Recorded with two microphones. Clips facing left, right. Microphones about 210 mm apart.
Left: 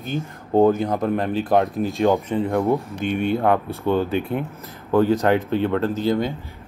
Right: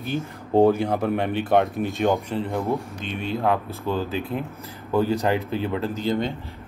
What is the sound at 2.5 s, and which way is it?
Speech, 55° left (ahead or behind).